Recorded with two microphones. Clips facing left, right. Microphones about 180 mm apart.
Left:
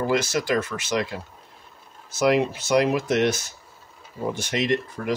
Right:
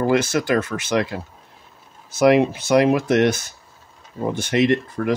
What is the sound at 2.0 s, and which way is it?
Speech, 60° right (ahead or behind).